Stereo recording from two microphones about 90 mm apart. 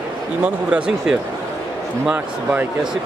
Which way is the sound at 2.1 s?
20° right (ahead or behind).